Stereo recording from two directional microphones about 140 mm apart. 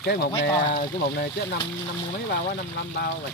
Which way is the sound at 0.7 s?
90° left.